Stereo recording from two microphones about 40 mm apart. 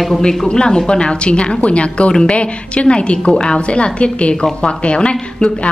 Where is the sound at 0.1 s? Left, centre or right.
Centre.